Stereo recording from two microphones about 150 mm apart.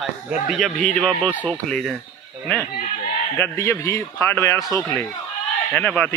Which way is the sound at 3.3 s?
15° left (ahead or behind).